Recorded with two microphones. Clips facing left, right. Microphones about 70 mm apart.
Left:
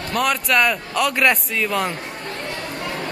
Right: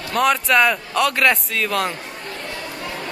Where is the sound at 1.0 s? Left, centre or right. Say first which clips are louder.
Even; centre.